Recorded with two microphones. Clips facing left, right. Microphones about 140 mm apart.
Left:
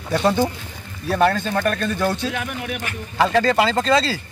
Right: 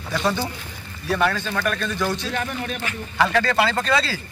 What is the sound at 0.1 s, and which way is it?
Speech, 50° left (ahead or behind).